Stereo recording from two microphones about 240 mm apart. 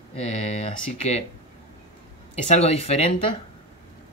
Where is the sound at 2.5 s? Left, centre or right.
Left.